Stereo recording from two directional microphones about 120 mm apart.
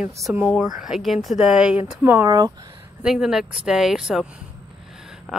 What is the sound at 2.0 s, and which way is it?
Speech, 15° right (ahead or behind).